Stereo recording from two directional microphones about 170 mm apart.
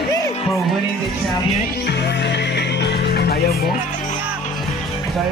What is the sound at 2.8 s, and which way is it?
Music, 70° left (ahead or behind).